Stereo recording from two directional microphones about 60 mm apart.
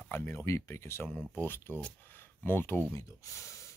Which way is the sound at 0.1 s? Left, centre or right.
Left.